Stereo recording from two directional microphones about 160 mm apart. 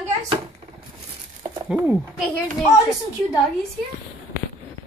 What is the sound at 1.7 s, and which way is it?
Speech, 10° right (ahead or behind).